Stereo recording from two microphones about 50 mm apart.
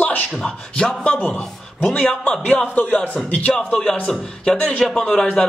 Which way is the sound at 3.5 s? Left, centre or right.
Centre.